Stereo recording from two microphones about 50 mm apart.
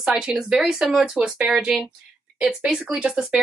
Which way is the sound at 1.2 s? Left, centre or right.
Centre.